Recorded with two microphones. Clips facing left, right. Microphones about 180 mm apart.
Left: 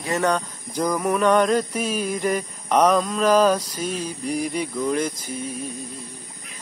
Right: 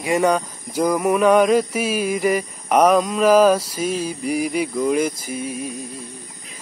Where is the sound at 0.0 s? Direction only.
10° right (ahead or behind).